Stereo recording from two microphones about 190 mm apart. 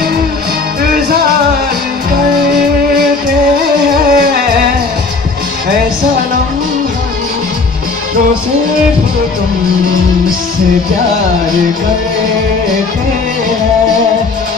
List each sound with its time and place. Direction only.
3.9 s music: 50° right (ahead or behind)